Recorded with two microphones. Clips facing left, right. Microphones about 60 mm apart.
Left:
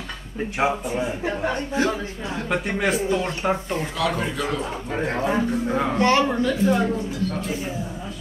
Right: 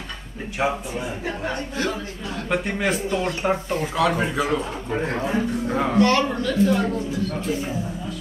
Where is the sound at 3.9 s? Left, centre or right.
Right.